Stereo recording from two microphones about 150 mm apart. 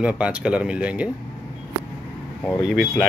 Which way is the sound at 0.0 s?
5° right (ahead or behind).